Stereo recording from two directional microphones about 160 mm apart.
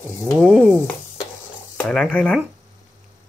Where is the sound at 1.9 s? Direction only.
5° left (ahead or behind).